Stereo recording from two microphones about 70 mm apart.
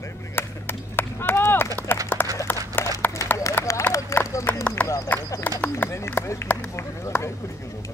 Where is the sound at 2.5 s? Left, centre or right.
Left.